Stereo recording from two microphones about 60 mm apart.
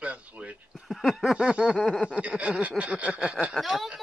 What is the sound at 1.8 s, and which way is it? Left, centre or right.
Speech, centre.